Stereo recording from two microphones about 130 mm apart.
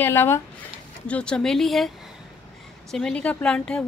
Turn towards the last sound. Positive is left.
turn(degrees=5)  # may be behind; listen again after turning